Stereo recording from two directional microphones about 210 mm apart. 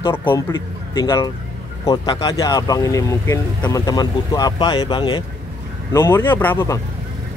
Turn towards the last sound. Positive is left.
turn(degrees=10)  # may be behind; listen again after turning